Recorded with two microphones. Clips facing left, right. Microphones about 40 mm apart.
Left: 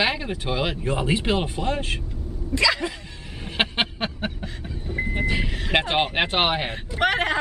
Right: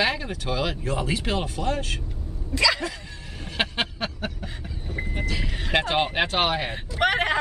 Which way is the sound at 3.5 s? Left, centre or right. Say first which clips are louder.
Left 3 dB; left.